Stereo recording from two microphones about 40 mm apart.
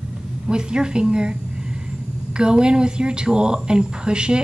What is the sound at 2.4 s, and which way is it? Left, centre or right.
A woman's voice, right.